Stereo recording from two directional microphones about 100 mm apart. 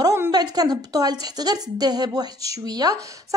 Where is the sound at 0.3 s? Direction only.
40° right (ahead or behind).